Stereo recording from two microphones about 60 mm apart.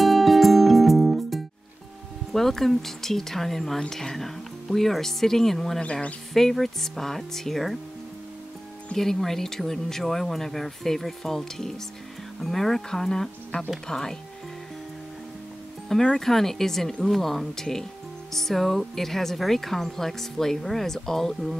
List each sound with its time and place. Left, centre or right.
0.0 s music: centre
2.3 s speech: centre
5.8 s speech: centre
6.3 s speech: centre
8.9 s speech: centre
15.9 s speech: centre